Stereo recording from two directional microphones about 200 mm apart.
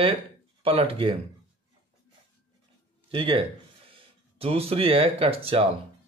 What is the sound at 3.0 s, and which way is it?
Speech, 25° right (ahead or behind).